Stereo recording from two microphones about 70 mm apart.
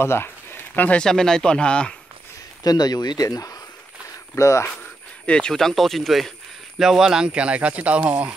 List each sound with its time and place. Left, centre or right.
0.0 s a sound: left
1.0 s speech: centre
2.6 s speech: left
4.4 s speech: left
5.2 s speech: centre